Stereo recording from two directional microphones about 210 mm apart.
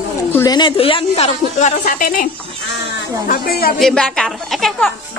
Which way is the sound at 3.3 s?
45° left (ahead or behind).